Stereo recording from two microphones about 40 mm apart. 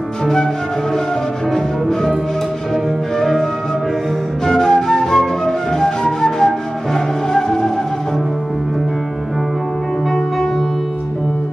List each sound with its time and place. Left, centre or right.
0.2 s flute: centre
1.5 s music: centre
4.5 s flute: centre